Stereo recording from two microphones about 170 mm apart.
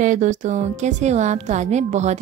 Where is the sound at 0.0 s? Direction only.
45° right (ahead or behind).